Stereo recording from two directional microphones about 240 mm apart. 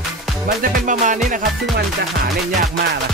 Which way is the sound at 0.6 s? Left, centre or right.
Right.